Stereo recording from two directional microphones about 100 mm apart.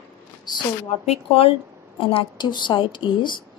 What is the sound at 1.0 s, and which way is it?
A woman's voice, 70° left (ahead or behind).